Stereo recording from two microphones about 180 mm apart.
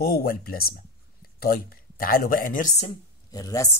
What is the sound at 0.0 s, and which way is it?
Speech, 55° left (ahead or behind).